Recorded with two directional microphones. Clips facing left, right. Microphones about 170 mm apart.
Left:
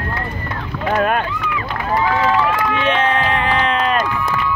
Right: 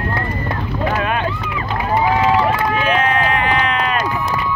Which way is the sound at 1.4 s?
25° right (ahead or behind).